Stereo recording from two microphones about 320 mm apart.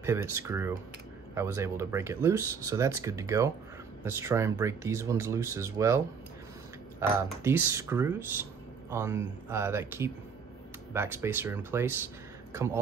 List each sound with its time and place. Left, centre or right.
0.0 s speech: centre